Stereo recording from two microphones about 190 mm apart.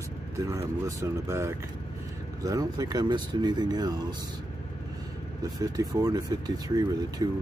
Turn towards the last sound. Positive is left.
turn(degrees=-25)  # may be behind; listen again after turning